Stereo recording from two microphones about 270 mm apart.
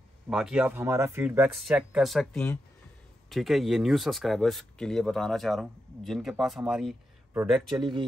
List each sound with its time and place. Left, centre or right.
0.3 s speech: centre
7.7 s speech: centre